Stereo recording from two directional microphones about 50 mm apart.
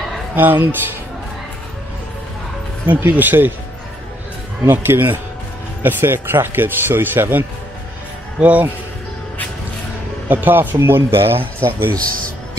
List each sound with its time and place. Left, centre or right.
0.4 s speech: right
2.9 s speech: right
4.6 s a man's voice: right
10.2 s speech: right
10.8 s a man's voice: right